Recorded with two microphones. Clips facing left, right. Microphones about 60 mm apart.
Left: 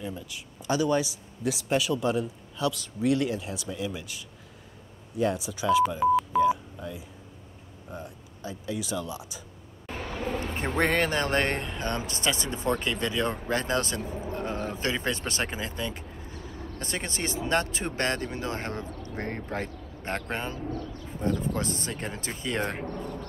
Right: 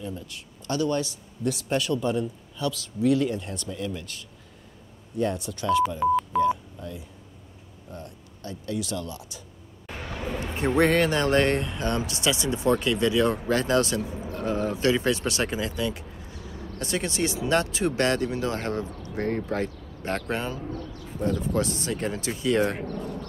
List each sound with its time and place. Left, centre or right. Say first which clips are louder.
0.1 s speech: right 1 dB; centre
9.8 s vehicle: left 1 dB; centre
10.8 s speech: right 4 dB; left
14.3 s a sound: right 5 dB; left
14.8 s speech: right 7 dB; left